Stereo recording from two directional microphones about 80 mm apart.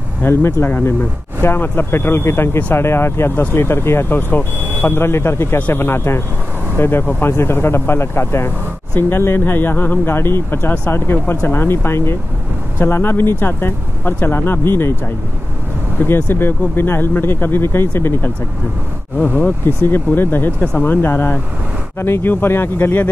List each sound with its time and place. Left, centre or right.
0.2 s speech: left
4.6 s vehicle: right
4.8 s speech: left
16.0 s speech: left